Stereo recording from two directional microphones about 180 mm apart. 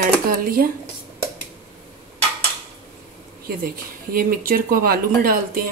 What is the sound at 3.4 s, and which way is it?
Speech, 55° right (ahead or behind).